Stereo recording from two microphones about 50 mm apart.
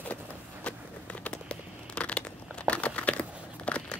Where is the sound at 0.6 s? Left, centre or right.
Left.